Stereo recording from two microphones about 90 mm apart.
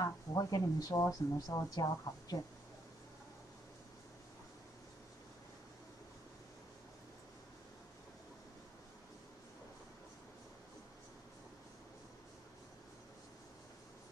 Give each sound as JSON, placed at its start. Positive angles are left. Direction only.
{"t": 0.0, "sound": "speech", "side_deg": 45}